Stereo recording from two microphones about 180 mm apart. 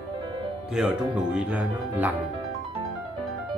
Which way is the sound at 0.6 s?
5° right (ahead or behind).